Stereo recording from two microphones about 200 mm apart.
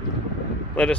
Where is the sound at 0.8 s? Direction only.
5° left (ahead or behind).